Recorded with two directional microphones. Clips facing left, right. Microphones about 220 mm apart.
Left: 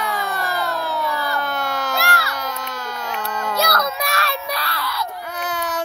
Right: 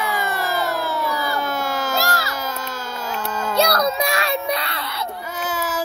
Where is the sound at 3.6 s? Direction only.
30° right (ahead or behind).